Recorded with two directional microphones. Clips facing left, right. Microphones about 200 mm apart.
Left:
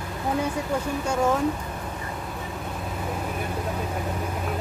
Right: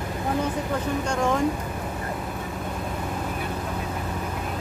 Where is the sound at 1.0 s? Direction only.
5° left (ahead or behind).